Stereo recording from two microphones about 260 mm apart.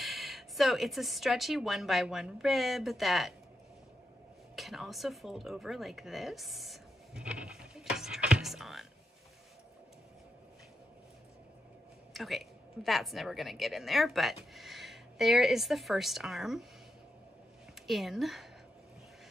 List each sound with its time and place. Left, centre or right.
0.0 s speech: centre
4.6 s a sound: centre
12.1 s a woman's voice: centre
17.8 s speech: centre